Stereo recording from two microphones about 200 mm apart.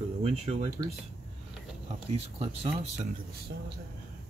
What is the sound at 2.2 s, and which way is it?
Speech, 30° right (ahead or behind).